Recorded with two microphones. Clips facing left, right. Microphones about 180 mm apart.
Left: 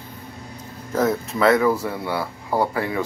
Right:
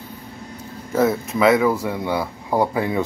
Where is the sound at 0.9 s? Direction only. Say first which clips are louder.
Right 2 dB; 5° right (ahead or behind).